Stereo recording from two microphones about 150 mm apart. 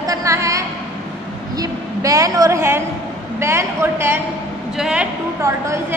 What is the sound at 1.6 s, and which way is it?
A woman's voice, 20° right (ahead or behind).